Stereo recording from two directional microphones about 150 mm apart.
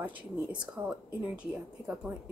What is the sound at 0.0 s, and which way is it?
Speech, 10° right (ahead or behind).